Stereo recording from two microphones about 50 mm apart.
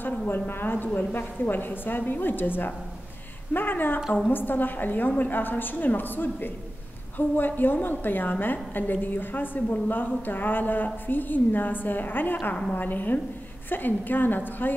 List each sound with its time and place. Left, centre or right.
0.3 s a woman's voice: left